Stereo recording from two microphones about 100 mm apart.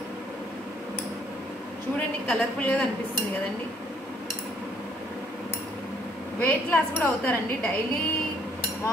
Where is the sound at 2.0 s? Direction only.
15° left (ahead or behind).